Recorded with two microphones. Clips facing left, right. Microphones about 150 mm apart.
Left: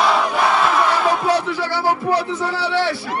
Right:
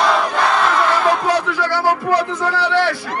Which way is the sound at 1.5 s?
50° right (ahead or behind).